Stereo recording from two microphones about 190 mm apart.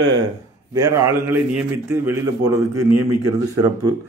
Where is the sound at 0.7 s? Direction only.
20° right (ahead or behind).